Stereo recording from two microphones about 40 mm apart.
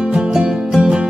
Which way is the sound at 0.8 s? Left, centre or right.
Right.